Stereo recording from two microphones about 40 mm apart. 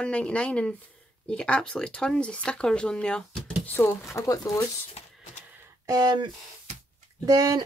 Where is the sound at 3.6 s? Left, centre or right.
Left.